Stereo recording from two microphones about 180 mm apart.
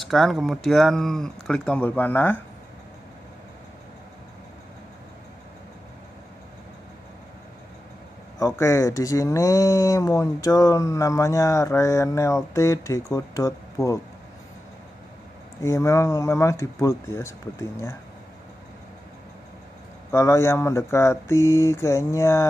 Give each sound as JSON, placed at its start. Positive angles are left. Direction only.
{"t": 0.0, "sound": "speech", "side_deg": 0}
{"t": 8.4, "sound": "speech", "side_deg": 15}
{"t": 15.6, "sound": "speech", "side_deg": 15}
{"t": 20.1, "sound": "speech", "side_deg": 15}